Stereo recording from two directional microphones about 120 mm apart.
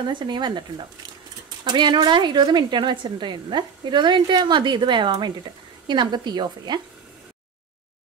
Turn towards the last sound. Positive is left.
turn(degrees=-35)  # may be behind; listen again after turning